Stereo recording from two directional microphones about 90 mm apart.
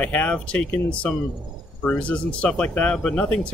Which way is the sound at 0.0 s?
15° left (ahead or behind).